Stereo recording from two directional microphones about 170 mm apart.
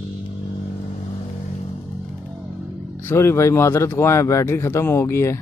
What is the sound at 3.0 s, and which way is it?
Speech, 15° left (ahead or behind).